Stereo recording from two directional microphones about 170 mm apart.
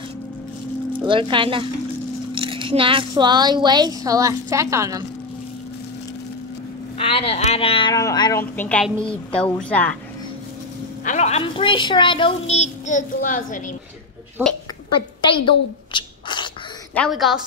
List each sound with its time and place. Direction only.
0.9 s speech: 30° right (ahead or behind)
7.0 s a woman's voice: 35° left (ahead or behind)
7.9 s a woman's voice: 20° left (ahead or behind)
11.1 s a woman's voice: 40° left (ahead or behind)
15.2 s a sound: 30° left (ahead or behind)
16.9 s a woman's voice: centre (ahead or behind)